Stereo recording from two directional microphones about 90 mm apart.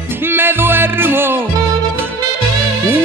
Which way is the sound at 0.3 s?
25° right (ahead or behind).